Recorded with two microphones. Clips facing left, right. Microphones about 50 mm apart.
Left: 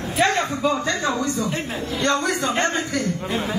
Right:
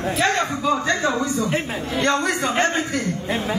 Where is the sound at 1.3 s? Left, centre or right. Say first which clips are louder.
Right 3 dB; right.